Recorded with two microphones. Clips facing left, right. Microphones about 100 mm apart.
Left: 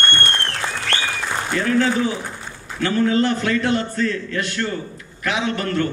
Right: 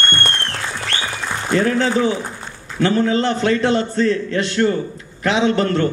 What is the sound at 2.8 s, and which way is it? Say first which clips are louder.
A man's voice: right 1 dB; 25° right (ahead or behind).